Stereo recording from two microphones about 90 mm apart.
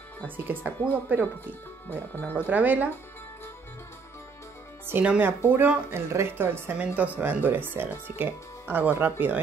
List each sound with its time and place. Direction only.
0.7 s speech: 20° right (ahead or behind)
1.9 s speech: 20° left (ahead or behind)
2.3 s speech: 15° right (ahead or behind)
4.8 s speech: 15° right (ahead or behind)